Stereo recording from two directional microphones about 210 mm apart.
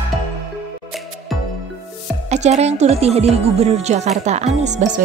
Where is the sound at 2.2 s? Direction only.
30° right (ahead or behind).